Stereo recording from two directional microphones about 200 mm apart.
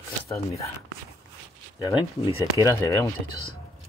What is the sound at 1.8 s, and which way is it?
Speech, 15° left (ahead or behind).